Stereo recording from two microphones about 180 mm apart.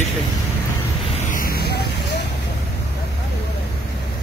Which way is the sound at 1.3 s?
55° left (ahead or behind).